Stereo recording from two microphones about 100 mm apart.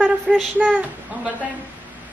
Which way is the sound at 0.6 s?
15° right (ahead or behind).